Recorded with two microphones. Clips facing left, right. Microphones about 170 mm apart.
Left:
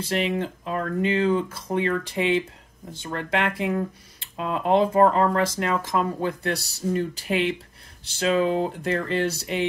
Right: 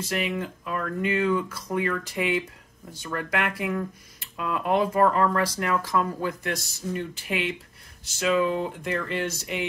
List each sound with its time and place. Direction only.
0.0 s speech: 30° left (ahead or behind)